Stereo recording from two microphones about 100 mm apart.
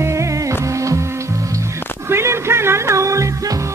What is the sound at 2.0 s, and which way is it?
Music, 25° right (ahead or behind).